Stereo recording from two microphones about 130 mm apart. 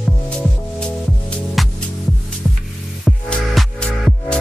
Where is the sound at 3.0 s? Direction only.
5° left (ahead or behind).